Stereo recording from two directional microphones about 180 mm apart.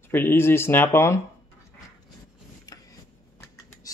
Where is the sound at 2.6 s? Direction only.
20° left (ahead or behind).